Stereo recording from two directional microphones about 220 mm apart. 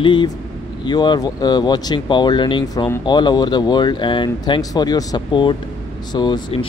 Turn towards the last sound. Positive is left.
turn(degrees=20)  # may be behind; listen again after turning